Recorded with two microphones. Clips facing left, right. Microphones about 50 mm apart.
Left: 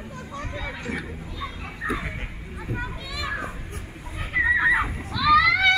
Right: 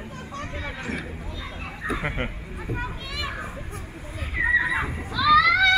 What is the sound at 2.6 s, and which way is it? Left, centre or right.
Speech, centre.